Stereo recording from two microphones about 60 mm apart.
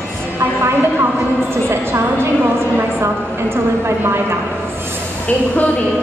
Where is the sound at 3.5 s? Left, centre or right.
Right.